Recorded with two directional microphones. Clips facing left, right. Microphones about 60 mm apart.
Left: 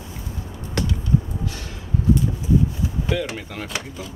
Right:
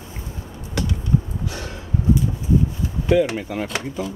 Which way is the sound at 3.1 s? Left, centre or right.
Centre.